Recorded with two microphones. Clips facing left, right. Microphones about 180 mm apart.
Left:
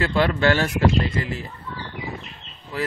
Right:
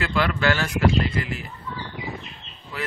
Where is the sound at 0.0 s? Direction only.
30° left (ahead or behind).